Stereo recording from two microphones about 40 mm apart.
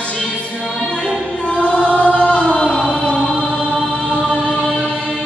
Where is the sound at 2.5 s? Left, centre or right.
Centre.